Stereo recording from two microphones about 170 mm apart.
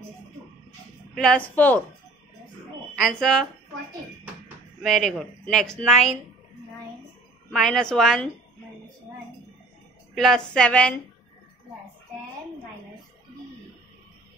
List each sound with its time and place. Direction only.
1.1 s a woman's voice: 5° left (ahead or behind)
3.0 s a woman's voice: 5° left (ahead or behind)
4.8 s a woman's voice: centre (ahead or behind)
7.5 s a woman's voice: centre (ahead or behind)
10.1 s a woman's voice: 5° left (ahead or behind)